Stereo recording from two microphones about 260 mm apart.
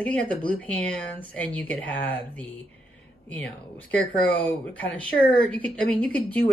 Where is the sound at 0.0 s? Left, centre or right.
Centre.